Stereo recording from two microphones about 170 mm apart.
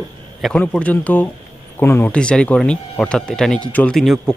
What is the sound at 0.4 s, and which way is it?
Speech, 5° left (ahead or behind).